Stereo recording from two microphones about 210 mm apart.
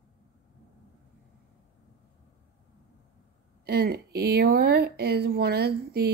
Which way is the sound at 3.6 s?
50° right (ahead or behind).